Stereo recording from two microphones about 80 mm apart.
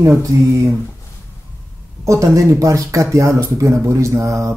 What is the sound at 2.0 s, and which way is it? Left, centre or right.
Speech, right.